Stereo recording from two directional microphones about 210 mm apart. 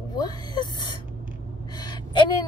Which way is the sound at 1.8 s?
20° left (ahead or behind).